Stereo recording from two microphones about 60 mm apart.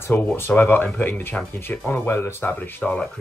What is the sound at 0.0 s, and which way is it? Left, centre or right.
Speech, left.